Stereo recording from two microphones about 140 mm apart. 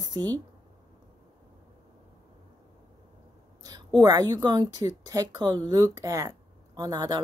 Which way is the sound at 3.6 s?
25° right (ahead or behind).